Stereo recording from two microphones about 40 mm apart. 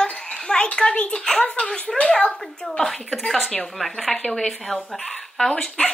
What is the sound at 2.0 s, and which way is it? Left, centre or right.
Speech, left.